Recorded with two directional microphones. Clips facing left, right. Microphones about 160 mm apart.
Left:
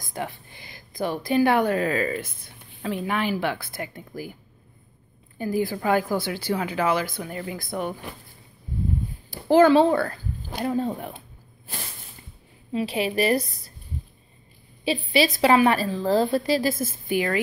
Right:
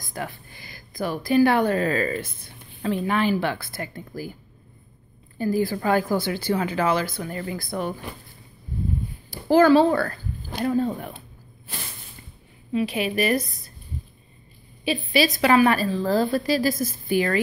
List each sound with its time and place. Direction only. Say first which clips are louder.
0.1 s speech: left 1 dB; 20° left (ahead or behind)
5.4 s speech: right 2 dB; 15° left (ahead or behind)
9.3 s a woman's voice: even; 20° left (ahead or behind)
12.7 s a woman's voice: right 1 dB; 30° left (ahead or behind)
14.9 s a woman's voice: even; 30° left (ahead or behind)